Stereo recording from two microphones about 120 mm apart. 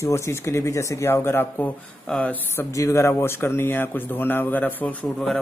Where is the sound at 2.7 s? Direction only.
25° left (ahead or behind).